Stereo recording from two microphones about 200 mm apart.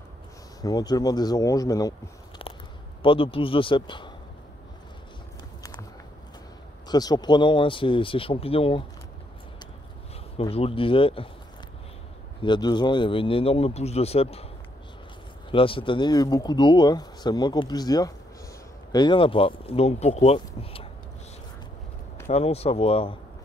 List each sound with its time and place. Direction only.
0.6 s speech: 20° left (ahead or behind)
5.6 s a sound: 15° left (ahead or behind)
6.9 s speech: 20° left (ahead or behind)
10.3 s speech: 30° left (ahead or behind)
12.4 s speech: 25° left (ahead or behind)
15.5 s speech: 25° left (ahead or behind)
22.3 s speech: 30° left (ahead or behind)